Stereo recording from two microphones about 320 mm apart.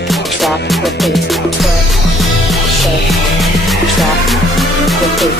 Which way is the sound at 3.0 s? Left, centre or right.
Centre.